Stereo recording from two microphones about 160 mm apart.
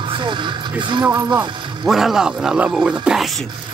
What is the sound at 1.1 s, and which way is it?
Speech, 10° right (ahead or behind).